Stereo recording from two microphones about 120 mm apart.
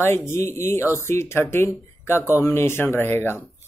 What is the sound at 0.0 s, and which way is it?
Speech, 20° left (ahead or behind).